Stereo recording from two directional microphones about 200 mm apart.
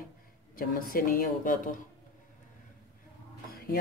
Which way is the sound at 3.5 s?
50° left (ahead or behind).